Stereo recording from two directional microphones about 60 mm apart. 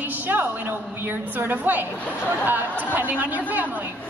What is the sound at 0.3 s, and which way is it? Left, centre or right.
A man's voice, right.